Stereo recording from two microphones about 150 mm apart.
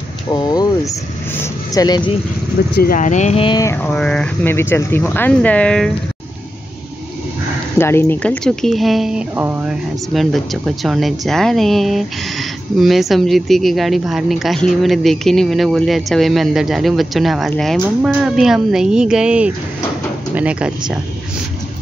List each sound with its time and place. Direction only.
0.3 s a sound: 25° left (ahead or behind)
1.3 s speech: 20° left (ahead or behind)
2.7 s speech: 80° left; by 3.4 s 50° left (ahead or behind)
3.4 s a sound: 25° left (ahead or behind)
3.7 s speech: 10° left (ahead or behind)
7.8 s a woman's voice: 15° left (ahead or behind); by 9.2 s centre (ahead or behind)
9.3 s speech: 15° right (ahead or behind)
10.1 s a woman's voice: centre (ahead or behind)